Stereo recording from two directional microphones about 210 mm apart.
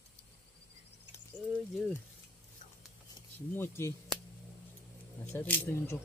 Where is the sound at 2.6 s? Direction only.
40° left (ahead or behind).